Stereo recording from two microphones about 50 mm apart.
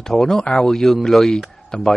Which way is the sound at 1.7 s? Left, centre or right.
Centre.